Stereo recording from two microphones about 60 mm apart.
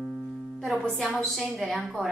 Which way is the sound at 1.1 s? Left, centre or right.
Centre.